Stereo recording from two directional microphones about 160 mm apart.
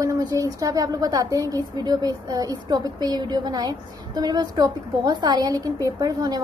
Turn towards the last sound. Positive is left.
turn(degrees=-25)  # may be behind; listen again after turning